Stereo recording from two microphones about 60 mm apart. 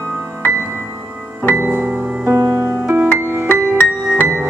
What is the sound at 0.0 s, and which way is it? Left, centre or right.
Music, right.